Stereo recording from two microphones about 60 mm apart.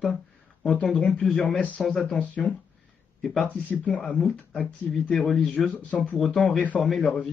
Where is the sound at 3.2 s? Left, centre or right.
Centre.